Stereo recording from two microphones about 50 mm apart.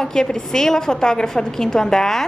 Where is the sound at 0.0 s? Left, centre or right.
Centre.